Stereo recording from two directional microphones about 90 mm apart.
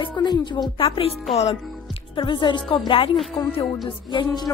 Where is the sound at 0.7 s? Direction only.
70° left (ahead or behind).